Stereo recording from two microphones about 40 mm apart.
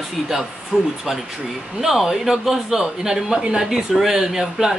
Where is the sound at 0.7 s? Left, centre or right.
Right.